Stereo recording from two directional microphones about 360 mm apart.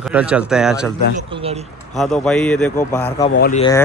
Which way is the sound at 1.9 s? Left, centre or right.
Centre.